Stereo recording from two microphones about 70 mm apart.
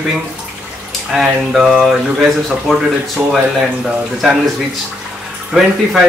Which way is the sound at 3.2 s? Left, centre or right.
Centre.